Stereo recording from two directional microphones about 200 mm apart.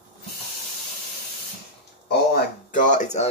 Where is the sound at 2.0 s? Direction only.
45° left (ahead or behind).